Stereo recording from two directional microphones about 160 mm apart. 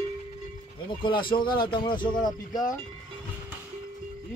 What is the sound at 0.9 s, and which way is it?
A man's voice, 30° left (ahead or behind).